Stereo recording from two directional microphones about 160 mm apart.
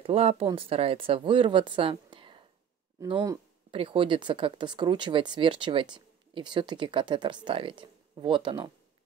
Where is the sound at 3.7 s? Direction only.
35° right (ahead or behind).